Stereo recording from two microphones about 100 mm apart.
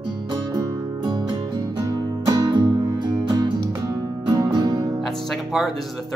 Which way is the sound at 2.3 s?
35° right (ahead or behind).